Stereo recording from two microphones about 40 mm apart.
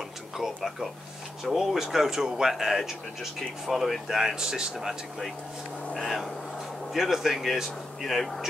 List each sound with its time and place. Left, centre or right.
0.4 s speech: centre
4.2 s speech: centre
4.7 s speech: centre
6.9 s speech: centre